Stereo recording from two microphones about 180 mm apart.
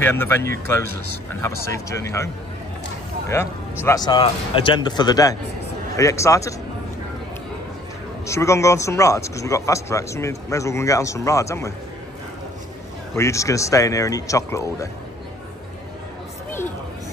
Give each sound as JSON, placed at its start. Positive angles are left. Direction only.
{"t": 0.0, "sound": "speech", "side_deg": 10}
{"t": 3.4, "sound": "speech", "side_deg": 15}
{"t": 8.3, "sound": "speech", "side_deg": 15}
{"t": 13.1, "sound": "speech", "side_deg": 15}